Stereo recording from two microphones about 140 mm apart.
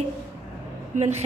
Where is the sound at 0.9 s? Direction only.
65° right (ahead or behind).